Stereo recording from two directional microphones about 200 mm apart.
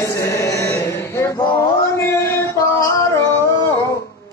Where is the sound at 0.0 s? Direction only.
15° left (ahead or behind).